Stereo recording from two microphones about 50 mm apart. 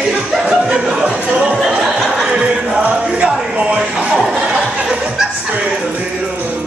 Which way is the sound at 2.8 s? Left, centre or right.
Right.